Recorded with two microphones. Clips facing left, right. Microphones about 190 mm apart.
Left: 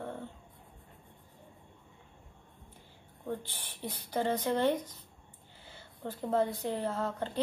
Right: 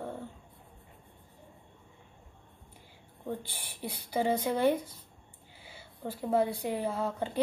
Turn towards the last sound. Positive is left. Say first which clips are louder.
# right 2 dB
turn(degrees=-10)  # may be behind; listen again after turning